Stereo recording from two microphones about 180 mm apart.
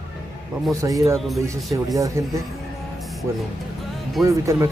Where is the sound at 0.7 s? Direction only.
20° right (ahead or behind).